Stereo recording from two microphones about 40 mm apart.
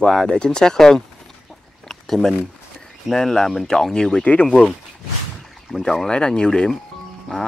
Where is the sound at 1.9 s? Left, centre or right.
Centre.